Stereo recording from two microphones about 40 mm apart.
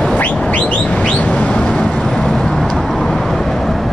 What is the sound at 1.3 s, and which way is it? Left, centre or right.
Vehicle, left.